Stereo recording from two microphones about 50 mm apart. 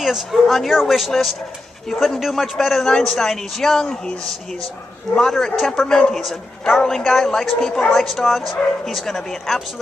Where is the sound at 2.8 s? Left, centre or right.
Centre.